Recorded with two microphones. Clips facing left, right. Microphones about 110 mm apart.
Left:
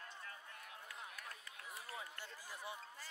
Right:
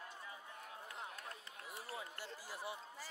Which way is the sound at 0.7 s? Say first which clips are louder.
Right 4 dB; 30° right (ahead or behind).